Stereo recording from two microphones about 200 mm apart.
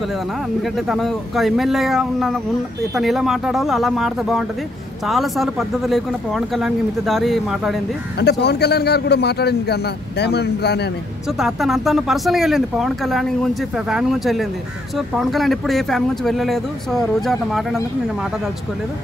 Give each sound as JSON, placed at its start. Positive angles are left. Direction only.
{"t": 0.6, "sound": "speech", "side_deg": 0}
{"t": 8.2, "sound": "a man's voice", "side_deg": 55}
{"t": 11.3, "sound": "speech", "side_deg": 0}